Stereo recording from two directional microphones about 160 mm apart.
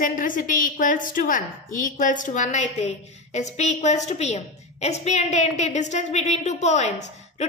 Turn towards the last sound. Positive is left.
turn(degrees=45)  # may be behind; listen again after turning